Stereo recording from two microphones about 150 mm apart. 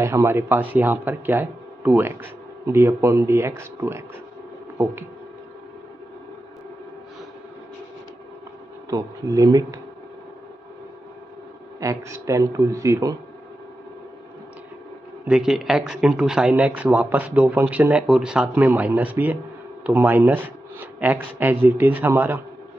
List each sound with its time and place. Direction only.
0.0 s speech: 20° right (ahead or behind)
8.9 s a man's voice: 25° right (ahead or behind)
11.8 s a man's voice: 20° right (ahead or behind)
15.2 s speech: 5° right (ahead or behind)